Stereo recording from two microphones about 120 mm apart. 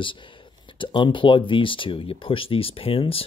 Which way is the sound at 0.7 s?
45° left (ahead or behind).